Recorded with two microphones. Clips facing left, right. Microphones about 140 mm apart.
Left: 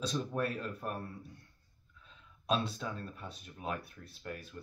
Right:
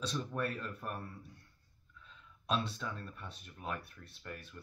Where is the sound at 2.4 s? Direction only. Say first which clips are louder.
Left 3 dB; 10° left (ahead or behind).